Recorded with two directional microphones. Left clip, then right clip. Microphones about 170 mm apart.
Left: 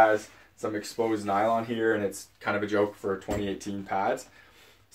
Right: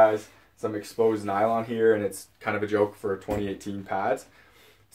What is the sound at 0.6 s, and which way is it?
Speech, 25° right (ahead or behind).